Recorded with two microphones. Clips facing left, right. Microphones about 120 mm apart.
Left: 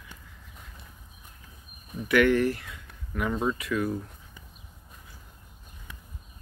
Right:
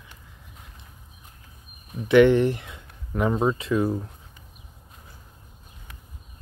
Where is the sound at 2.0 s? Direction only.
25° right (ahead or behind).